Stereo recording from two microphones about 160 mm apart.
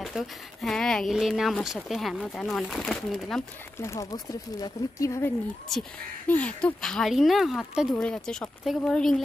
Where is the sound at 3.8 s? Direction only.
20° left (ahead or behind).